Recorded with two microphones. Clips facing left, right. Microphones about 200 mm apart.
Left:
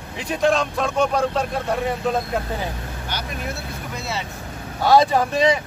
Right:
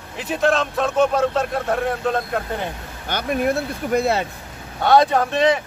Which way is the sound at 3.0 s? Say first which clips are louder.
Right 10 dB; 55° right (ahead or behind).